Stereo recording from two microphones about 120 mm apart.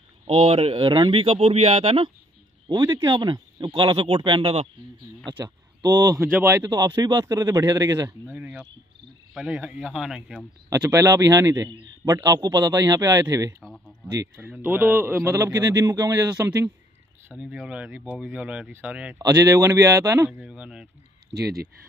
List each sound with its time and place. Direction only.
0.3 s speech: 60° right (ahead or behind)
3.0 s speech: 40° right (ahead or behind); by 4.6 s 55° right (ahead or behind)
5.2 s speech: 35° right (ahead or behind)
8.3 s speech: 10° right (ahead or behind)
10.9 s speech: 25° right (ahead or behind)
14.3 s speech: 15° right (ahead or behind)
17.3 s speech: 10° right (ahead or behind)
19.1 s speech: 30° right (ahead or behind)
20.2 s speech: 5° right (ahead or behind)
21.3 s speech: 20° right (ahead or behind)